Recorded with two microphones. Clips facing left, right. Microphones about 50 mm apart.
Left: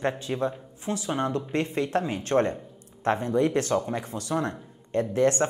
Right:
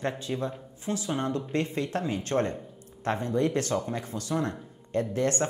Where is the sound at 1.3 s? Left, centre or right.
Left.